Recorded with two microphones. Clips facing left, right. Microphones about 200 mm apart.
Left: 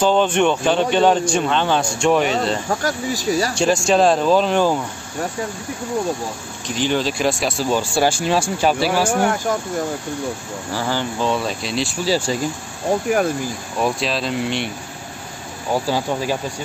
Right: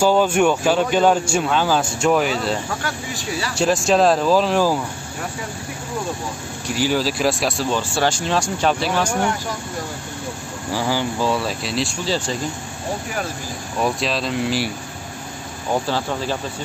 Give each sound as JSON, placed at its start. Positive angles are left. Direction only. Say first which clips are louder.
{"t": 0.0, "sound": "speech", "louder": "even", "side_deg": -10}
{"t": 2.7, "sound": "speech", "louder": "left 6 dB", "side_deg": 40}
{"t": 3.5, "sound": "speech", "louder": "right 2 dB", "side_deg": 0}
{"t": 6.7, "sound": "speech", "louder": "even", "side_deg": -5}
{"t": 7.7, "sound": "speech", "louder": "left 2 dB", "side_deg": 10}
{"t": 10.7, "sound": "speech", "louder": "right 1 dB", "side_deg": -10}
{"t": 13.7, "sound": "speech", "louder": "even", "side_deg": 0}
{"t": 15.7, "sound": "speech", "louder": "left 2 dB", "side_deg": 10}